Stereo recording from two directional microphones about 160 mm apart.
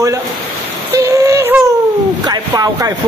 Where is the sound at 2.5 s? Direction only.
20° right (ahead or behind).